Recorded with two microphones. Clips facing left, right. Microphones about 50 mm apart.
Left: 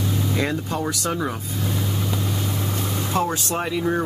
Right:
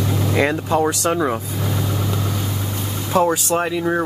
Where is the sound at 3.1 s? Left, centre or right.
Centre.